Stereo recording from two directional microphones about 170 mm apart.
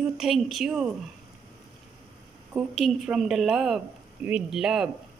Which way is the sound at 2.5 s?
Centre (ahead or behind).